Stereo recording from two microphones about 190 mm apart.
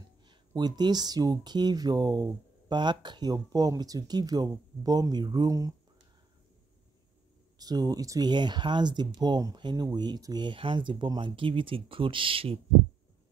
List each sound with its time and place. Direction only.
0.3 s speech: 20° right (ahead or behind)
7.5 s speech: 20° right (ahead or behind)